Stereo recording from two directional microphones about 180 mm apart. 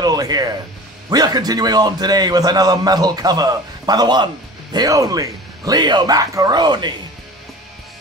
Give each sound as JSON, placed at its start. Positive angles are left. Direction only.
{"t": 0.0, "sound": "a man's voice", "side_deg": -20}